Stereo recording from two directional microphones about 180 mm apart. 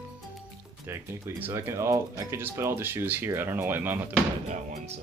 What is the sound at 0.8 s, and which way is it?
Speech, 10° right (ahead or behind).